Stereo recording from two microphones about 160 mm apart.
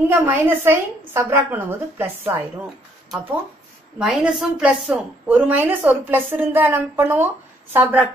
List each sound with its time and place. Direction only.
0.1 s a woman's voice: 15° right (ahead or behind)
4.0 s a woman's voice: 5° right (ahead or behind)